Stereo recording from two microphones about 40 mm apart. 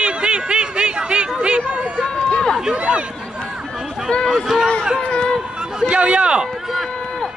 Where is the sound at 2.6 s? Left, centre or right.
Right.